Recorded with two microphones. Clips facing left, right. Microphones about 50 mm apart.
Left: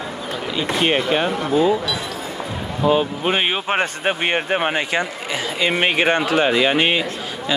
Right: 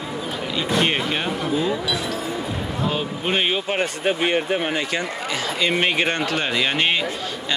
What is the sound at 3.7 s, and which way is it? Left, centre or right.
Speech, left.